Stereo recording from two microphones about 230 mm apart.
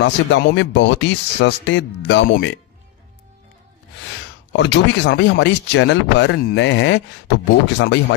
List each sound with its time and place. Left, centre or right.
0.0 s speech: left
4.5 s speech: left